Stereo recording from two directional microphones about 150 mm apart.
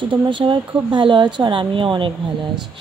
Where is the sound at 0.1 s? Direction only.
35° right (ahead or behind).